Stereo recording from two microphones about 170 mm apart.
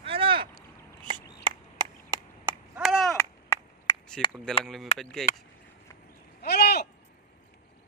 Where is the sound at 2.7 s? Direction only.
Centre (ahead or behind).